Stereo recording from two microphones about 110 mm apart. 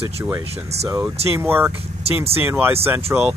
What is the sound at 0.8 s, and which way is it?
Speech, 15° right (ahead or behind).